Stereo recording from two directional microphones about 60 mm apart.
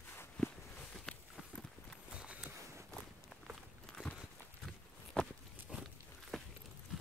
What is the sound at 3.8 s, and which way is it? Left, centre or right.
Walk, centre.